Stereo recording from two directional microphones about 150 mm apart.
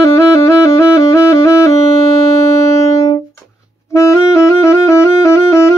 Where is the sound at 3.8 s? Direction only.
20° left (ahead or behind).